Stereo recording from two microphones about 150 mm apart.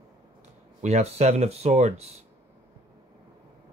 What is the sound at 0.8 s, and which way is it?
Speech, 45° right (ahead or behind).